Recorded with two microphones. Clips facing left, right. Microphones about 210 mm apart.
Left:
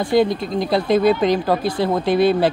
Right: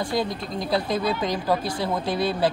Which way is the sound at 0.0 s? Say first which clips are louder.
Left 9 dB; 65° left (ahead or behind).